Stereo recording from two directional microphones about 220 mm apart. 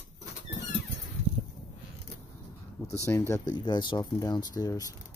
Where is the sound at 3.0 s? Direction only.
10° left (ahead or behind).